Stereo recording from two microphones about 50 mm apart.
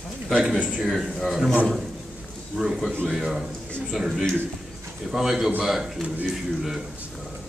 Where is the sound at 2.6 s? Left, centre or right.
Centre.